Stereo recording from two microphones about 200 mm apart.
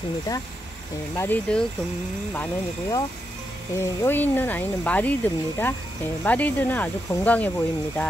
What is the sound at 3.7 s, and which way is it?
Speech, 10° left (ahead or behind).